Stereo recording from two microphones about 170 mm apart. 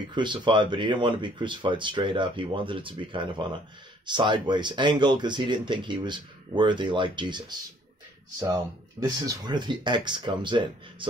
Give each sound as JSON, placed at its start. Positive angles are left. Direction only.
{"t": 0.1, "sound": "speech", "side_deg": -25}
{"t": 9.0, "sound": "speech", "side_deg": -20}